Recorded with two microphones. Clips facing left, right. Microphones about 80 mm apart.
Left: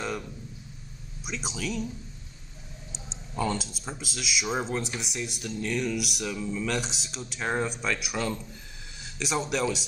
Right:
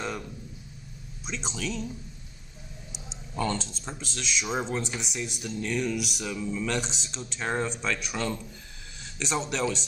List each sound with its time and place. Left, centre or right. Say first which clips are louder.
0.0 s a sound: left 1 dB; centre
1.2 s speech: even; centre
3.3 s speech: even; centre